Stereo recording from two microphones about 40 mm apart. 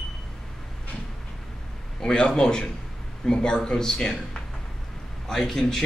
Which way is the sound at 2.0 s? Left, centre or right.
Left.